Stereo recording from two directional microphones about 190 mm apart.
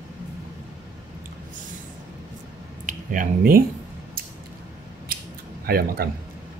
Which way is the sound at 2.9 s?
45° right (ahead or behind).